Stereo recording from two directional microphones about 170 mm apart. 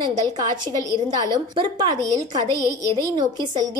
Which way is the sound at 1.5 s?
25° right (ahead or behind).